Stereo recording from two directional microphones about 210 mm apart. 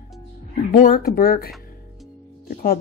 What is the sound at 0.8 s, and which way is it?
Speech, 45° left (ahead or behind).